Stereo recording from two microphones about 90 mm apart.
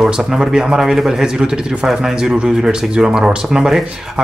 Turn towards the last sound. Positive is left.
turn(degrees=-5)  # may be behind; listen again after turning